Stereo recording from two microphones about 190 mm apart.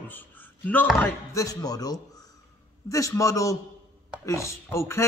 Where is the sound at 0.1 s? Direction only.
10° left (ahead or behind).